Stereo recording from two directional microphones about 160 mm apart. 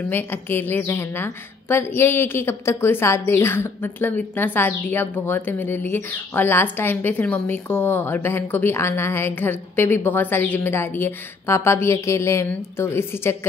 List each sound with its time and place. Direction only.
0.1 s a woman's voice: 15° left (ahead or behind)